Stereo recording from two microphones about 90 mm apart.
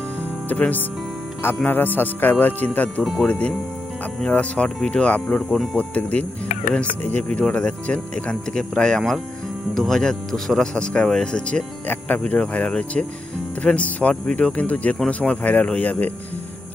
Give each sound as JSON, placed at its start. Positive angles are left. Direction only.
{"t": 0.5, "sound": "speech", "side_deg": 20}
{"t": 3.0, "sound": "speech", "side_deg": 0}
{"t": 3.3, "sound": "speech", "side_deg": 15}